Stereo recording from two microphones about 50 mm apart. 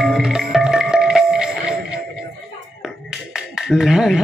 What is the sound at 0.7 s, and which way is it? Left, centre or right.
Music, centre.